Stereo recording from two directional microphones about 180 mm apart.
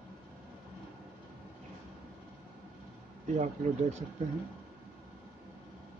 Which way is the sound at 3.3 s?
40° right (ahead or behind).